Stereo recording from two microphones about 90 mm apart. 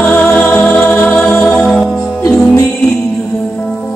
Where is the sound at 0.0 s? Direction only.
20° left (ahead or behind).